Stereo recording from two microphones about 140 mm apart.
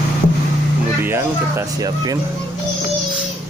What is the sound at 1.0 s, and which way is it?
Speech, 15° right (ahead or behind).